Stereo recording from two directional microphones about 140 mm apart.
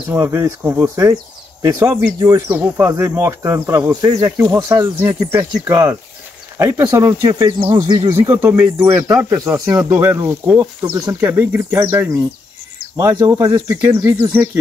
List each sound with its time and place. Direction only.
0.1 s speech: 20° right (ahead or behind)
8.1 s speech: 20° right (ahead or behind)